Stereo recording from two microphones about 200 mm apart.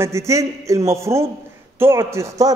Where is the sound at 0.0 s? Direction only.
15° right (ahead or behind).